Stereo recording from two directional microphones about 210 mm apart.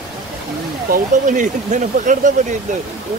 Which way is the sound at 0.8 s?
40° right (ahead or behind).